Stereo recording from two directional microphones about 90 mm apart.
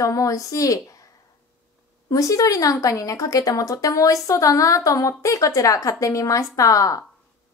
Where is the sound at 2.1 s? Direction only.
40° left (ahead or behind).